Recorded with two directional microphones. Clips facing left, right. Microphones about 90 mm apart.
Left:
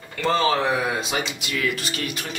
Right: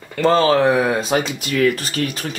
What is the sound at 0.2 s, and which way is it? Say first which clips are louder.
Speech: right 7 dB; 35° right (ahead or behind).